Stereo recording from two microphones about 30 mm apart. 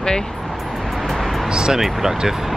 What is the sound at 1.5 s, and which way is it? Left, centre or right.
Speech, right.